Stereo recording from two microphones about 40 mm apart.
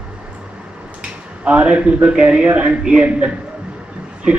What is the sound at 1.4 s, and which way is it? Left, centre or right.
Speech, right.